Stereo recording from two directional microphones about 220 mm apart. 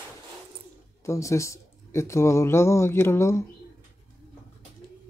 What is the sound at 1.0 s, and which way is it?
Speech, 15° left (ahead or behind).